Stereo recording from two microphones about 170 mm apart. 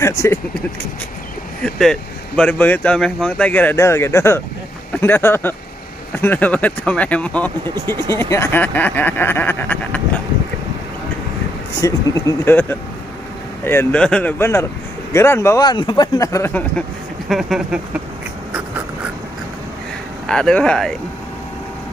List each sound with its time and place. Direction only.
0.0 s speech: 15° left (ahead or behind)
1.6 s speech: 5° left (ahead or behind)
11.8 s speech: 15° left (ahead or behind)
17.3 s speech: centre (ahead or behind)
20.2 s speech: 5° left (ahead or behind)